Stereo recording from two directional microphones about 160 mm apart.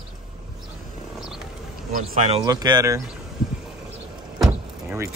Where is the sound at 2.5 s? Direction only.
25° right (ahead or behind).